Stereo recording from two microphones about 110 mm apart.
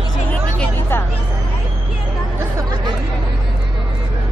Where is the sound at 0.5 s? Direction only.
20° left (ahead or behind).